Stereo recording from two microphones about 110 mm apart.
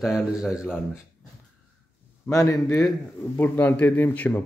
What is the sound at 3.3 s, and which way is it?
A man's voice, 20° left (ahead or behind).